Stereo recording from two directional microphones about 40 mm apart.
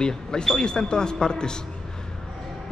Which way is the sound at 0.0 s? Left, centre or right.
Centre.